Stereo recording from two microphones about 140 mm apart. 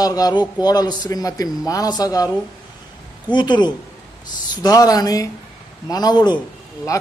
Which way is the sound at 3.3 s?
30° left (ahead or behind).